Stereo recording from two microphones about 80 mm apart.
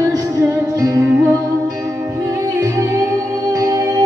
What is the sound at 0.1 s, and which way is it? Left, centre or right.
Music, right.